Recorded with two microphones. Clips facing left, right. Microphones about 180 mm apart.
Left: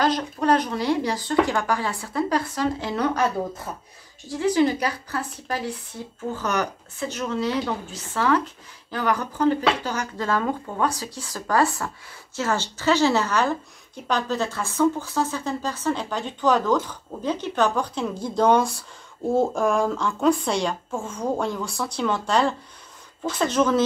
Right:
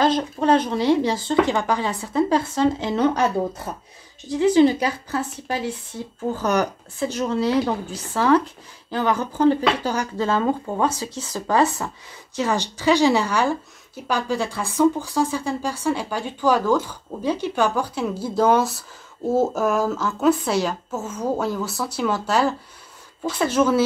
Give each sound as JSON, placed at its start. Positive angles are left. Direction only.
{"t": 0.0, "sound": "speech", "side_deg": -25}
{"t": 4.3, "sound": "speech", "side_deg": -20}
{"t": 6.3, "sound": "a woman's voice", "side_deg": -35}